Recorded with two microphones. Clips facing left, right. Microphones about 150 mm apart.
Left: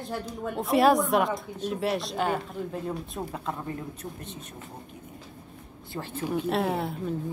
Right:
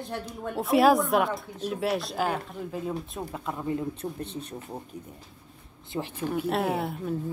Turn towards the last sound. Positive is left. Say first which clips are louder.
# even
turn(degrees=0)  # may be behind; listen again after turning